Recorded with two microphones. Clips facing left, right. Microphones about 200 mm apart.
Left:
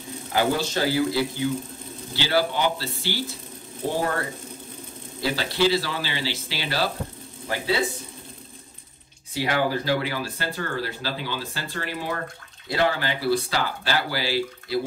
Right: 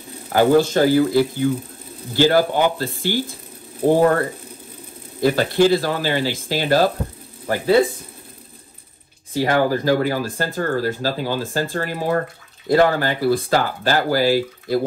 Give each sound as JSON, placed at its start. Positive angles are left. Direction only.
{"t": 0.3, "sound": "speech", "side_deg": -50}
{"t": 5.2, "sound": "speech", "side_deg": -50}
{"t": 9.3, "sound": "speech", "side_deg": -45}